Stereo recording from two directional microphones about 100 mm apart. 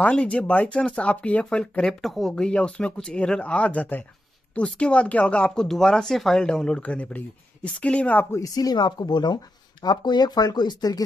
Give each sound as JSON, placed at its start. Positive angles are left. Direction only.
{"t": 0.0, "sound": "speech", "side_deg": 10}
{"t": 8.3, "sound": "speech", "side_deg": 35}